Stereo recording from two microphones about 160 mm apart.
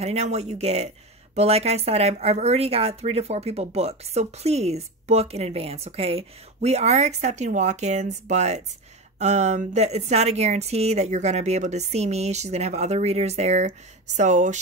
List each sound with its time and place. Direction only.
0.0 s a woman's voice: 40° right (ahead or behind)